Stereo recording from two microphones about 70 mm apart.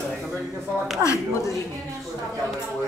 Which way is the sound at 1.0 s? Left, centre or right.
Left.